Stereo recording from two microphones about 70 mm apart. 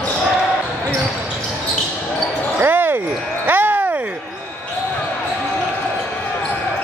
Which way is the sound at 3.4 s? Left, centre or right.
Right.